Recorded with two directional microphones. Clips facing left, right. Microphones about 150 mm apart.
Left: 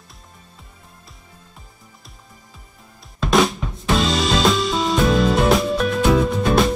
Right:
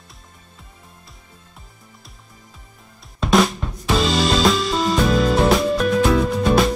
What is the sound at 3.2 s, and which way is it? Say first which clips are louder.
Drum kit: even; centre (ahead or behind).